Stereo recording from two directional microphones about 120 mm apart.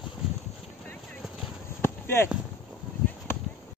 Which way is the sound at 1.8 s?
20° left (ahead or behind).